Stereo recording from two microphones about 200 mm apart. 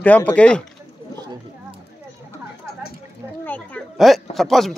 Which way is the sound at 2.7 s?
50° left (ahead or behind).